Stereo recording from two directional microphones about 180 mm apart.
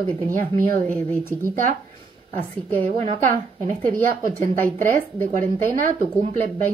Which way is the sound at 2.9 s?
30° right (ahead or behind).